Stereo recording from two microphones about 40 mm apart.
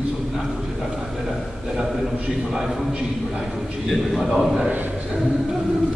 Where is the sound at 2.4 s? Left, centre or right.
Centre.